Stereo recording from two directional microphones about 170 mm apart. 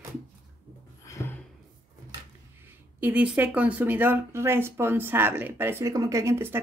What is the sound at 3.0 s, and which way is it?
Speech, 10° right (ahead or behind).